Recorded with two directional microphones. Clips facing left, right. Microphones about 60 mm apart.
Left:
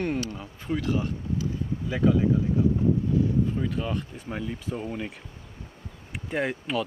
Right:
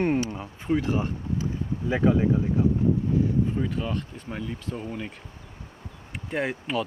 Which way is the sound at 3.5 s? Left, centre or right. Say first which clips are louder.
Right 1 dB; centre.